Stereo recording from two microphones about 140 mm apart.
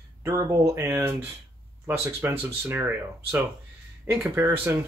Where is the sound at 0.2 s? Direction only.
20° right (ahead or behind).